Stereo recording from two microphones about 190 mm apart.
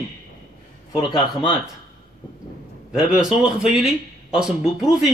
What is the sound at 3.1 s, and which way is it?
A man's voice, 5° right (ahead or behind).